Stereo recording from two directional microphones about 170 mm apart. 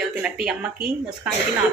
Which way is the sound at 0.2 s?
5° right (ahead or behind).